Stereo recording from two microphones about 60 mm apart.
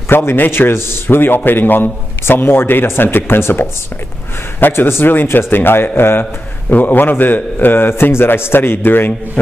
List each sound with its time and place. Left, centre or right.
0.1 s a man's voice: left